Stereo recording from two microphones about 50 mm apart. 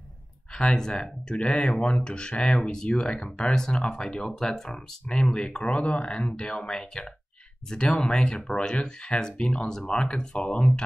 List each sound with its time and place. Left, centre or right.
0.6 s speech: centre